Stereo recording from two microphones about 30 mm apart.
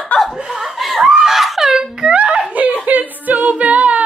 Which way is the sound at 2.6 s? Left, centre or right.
Right.